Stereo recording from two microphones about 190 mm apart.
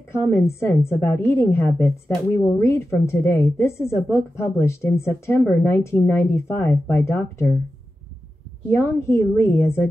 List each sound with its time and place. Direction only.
0.1 s a woman's voice: 15° left (ahead or behind)
8.7 s a woman's voice: 10° left (ahead or behind)